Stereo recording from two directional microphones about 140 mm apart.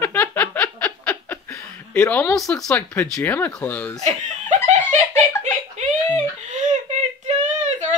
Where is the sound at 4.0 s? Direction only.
55° right (ahead or behind).